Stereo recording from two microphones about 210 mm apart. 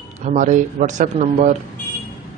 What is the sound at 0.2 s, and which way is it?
Speech, 35° right (ahead or behind).